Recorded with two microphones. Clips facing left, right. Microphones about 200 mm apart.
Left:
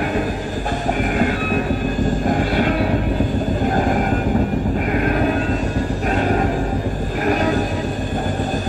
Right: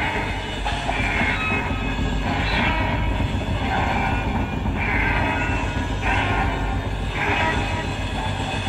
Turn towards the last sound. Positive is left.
turn(degrees=40)  # may be behind; listen again after turning